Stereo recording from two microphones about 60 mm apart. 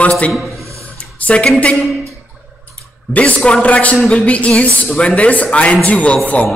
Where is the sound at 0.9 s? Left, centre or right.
Left.